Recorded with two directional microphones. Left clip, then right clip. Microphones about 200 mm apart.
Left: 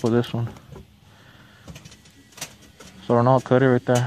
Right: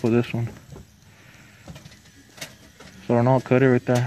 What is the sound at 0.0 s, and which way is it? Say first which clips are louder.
Speech: even; 10° left (ahead or behind).